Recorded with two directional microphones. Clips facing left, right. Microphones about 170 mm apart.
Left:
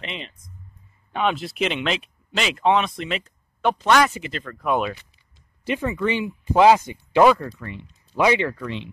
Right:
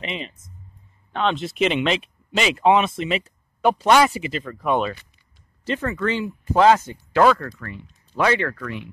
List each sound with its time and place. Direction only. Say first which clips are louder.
0.0 s speech: right 4 dB; centre (ahead or behind)
5.7 s speech: left 1 dB; 15° left (ahead or behind)